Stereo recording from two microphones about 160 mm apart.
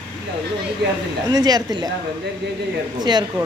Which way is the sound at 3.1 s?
25° right (ahead or behind).